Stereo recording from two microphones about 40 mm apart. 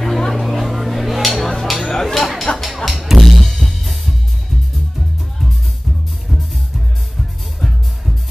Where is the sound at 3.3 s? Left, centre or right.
Centre.